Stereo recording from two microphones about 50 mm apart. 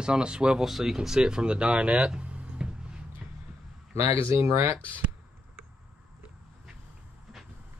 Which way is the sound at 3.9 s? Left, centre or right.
Right.